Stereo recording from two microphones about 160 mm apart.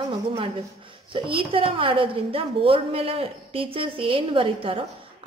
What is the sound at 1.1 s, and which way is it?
A woman's voice, 35° right (ahead or behind).